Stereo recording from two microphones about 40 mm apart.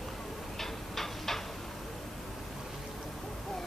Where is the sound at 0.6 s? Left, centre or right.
Centre.